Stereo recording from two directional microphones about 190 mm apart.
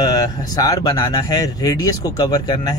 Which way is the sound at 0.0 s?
20° left (ahead or behind).